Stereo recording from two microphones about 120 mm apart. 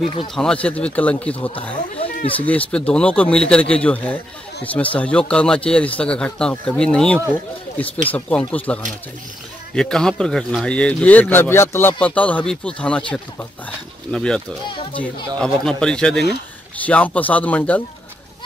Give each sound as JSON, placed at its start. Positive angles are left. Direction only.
{"t": 0.3, "sound": "speech", "side_deg": 5}
{"t": 2.0, "sound": "speech", "side_deg": 50}
{"t": 2.4, "sound": "speech", "side_deg": 10}
{"t": 14.1, "sound": "speech", "side_deg": 5}